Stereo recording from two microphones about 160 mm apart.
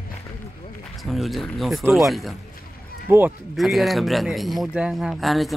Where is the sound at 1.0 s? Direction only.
Centre (ahead or behind).